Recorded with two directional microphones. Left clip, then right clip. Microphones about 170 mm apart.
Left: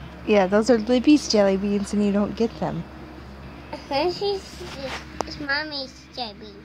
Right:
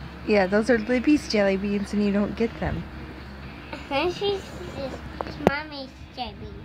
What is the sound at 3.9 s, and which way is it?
Speech, centre (ahead or behind).